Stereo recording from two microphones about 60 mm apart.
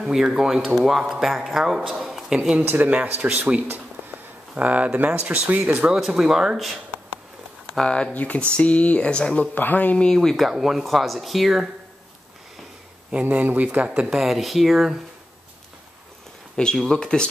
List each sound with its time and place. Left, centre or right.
0.0 s speech: centre
2.6 s speech: right
2.9 s speech: right
3.6 s a sound: right
4.6 s speech: right
5.9 s speech: centre
7.7 s speech: centre
8.1 s speech: left
9.4 s speech: left
10.0 s speech: centre
13.2 s speech: right
13.8 s speech: centre
16.7 s speech: centre